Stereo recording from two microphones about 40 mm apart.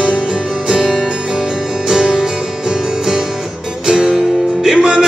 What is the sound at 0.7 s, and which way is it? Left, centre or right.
Music, centre.